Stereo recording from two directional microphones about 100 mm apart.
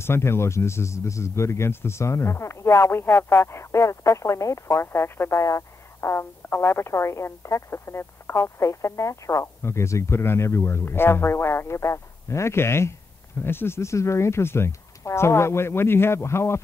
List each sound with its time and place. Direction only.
0.0 s speech: 25° left (ahead or behind)